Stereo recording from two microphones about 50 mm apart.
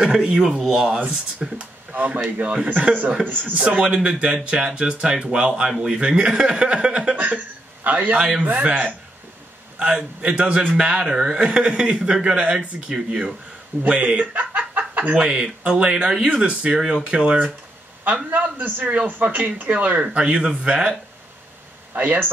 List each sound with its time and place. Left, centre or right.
0.0 s speech: centre
0.7 s speech: right
1.4 s speech: centre
1.9 s speech: right
7.2 s a man's voice: right
15.1 s speech: centre
18.0 s speech: right
20.1 s speech: right
21.9 s speech: right